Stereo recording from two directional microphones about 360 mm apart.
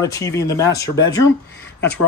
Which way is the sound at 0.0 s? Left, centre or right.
Centre.